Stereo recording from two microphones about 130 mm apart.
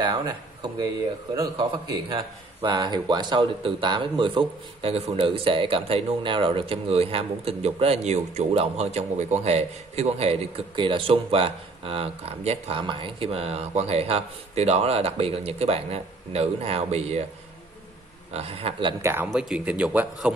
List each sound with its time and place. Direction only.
0.0 s speech: 35° right (ahead or behind); by 17.3 s 55° right (ahead or behind)
18.3 s speech: 50° right (ahead or behind)
18.9 s speech: 20° right (ahead or behind)
19.2 s a man's voice: 10° right (ahead or behind)